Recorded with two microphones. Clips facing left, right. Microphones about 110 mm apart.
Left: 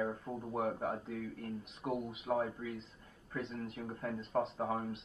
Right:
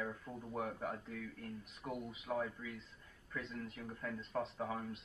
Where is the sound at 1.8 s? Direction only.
25° left (ahead or behind).